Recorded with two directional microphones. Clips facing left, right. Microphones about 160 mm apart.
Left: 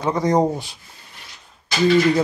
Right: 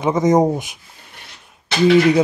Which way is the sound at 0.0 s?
20° right (ahead or behind).